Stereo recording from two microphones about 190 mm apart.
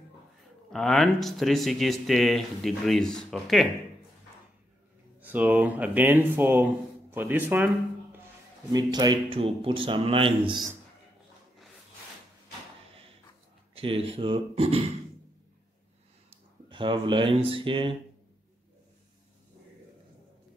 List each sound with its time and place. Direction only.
0.7 s speech: centre (ahead or behind)
5.2 s speech: 10° right (ahead or behind)
8.7 s a man's voice: 20° right (ahead or behind)
13.7 s a man's voice: 30° right (ahead or behind)
16.3 s a sound: 25° right (ahead or behind)
17.5 s a man's voice: 25° right (ahead or behind)